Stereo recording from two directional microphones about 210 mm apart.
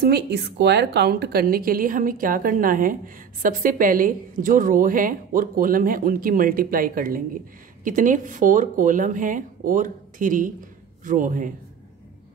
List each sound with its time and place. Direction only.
0.0 s a woman's voice: 50° right (ahead or behind)